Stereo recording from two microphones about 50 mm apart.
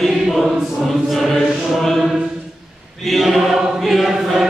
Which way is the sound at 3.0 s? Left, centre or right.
Centre.